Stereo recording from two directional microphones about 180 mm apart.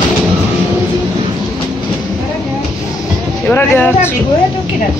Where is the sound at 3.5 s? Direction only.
10° left (ahead or behind).